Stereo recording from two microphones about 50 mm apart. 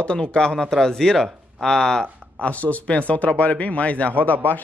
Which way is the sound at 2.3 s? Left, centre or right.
Left.